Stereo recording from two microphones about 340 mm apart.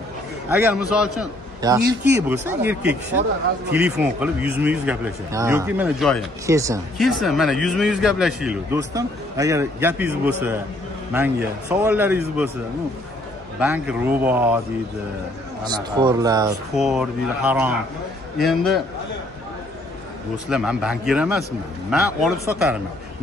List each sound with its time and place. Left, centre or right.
0.5 s speech: centre
2.9 s speech: right
3.7 s speech: centre
11.7 s speech: centre
13.6 s speech: centre
15.6 s speech: centre
20.4 s speech: centre